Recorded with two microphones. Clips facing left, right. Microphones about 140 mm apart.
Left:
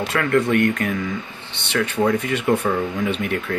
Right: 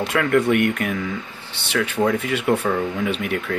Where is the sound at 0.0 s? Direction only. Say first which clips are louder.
Right 1 dB; 10° right (ahead or behind).